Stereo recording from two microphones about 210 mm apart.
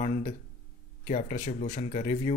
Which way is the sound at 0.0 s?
35° left (ahead or behind).